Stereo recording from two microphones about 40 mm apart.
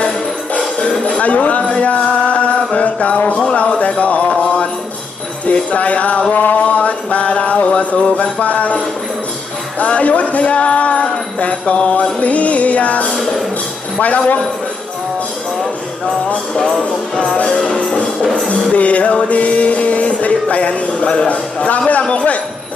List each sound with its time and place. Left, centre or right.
1.0 s a sound: left
3.5 s music: left
6.3 s mantra: left
6.6 s mantra: left
9.8 s speech: left
13.1 s tambourine: centre
13.9 s music: left
16.5 s music: centre; by 22.4 s left